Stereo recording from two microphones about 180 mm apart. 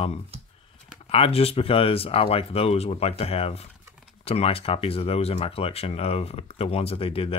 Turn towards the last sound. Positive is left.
turn(degrees=30)  # may be behind; listen again after turning